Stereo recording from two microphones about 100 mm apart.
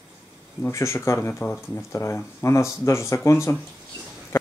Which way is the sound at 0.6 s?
30° left (ahead or behind).